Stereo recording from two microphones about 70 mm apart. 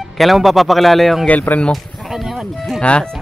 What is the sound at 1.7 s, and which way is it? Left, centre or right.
Music, centre.